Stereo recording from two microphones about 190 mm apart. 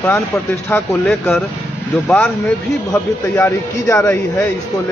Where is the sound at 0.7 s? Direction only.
5° left (ahead or behind).